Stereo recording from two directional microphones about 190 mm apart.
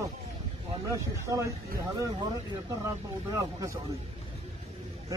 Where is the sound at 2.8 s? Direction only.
15° right (ahead or behind).